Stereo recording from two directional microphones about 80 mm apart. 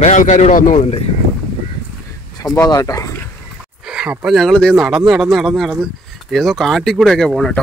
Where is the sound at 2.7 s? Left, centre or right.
Left.